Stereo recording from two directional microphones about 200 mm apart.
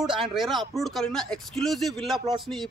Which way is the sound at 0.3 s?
Centre (ahead or behind).